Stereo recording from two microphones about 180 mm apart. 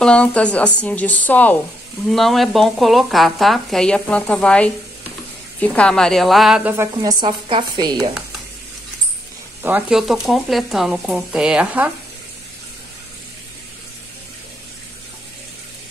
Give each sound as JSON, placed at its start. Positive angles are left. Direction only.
{"t": 0.0, "sound": "a woman's voice", "side_deg": 5}
{"t": 6.8, "sound": "speech", "side_deg": -20}
{"t": 9.6, "sound": "speech", "side_deg": -10}